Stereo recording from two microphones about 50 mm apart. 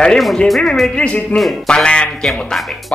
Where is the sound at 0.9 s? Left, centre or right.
Left.